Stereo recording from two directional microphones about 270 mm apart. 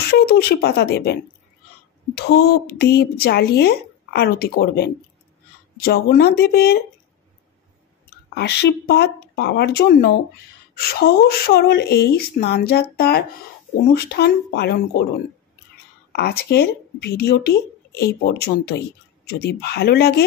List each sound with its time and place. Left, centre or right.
0.1 s speech: left
2.1 s speech: left
8.4 s speech: left
16.1 s speech: left